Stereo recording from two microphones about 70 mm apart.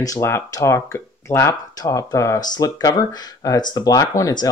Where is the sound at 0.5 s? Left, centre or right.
Left.